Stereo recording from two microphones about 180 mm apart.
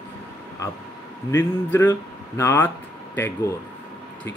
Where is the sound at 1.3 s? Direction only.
15° left (ahead or behind).